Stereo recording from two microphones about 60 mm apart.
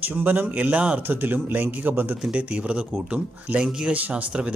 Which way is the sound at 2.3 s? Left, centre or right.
Centre.